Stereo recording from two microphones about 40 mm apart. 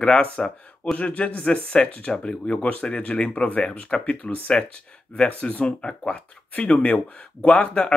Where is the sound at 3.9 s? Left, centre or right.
Centre.